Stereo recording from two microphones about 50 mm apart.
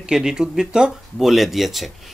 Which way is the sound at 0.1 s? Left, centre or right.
Centre.